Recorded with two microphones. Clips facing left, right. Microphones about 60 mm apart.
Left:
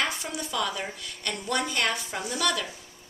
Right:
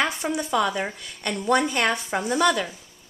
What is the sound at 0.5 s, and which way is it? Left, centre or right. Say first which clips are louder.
A woman's voice: right 5 dB; right.